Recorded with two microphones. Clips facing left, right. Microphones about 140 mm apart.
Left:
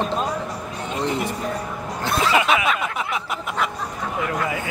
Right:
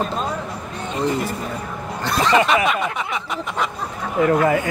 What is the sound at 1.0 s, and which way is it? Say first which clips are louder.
Snicker: right 2 dB; centre (ahead or behind).